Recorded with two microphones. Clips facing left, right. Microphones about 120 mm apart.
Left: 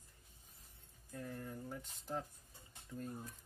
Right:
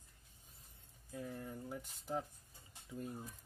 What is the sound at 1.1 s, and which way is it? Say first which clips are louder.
Speech: right 1 dB; 10° right (ahead or behind).